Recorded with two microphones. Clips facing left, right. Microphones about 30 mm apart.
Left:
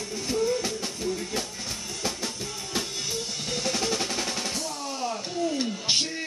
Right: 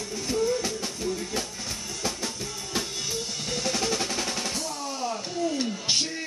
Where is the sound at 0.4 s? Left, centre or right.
Left.